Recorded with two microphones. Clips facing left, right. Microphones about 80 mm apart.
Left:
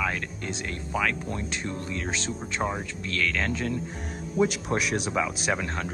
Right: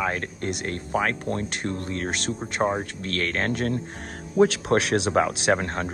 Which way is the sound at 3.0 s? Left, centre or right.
Right.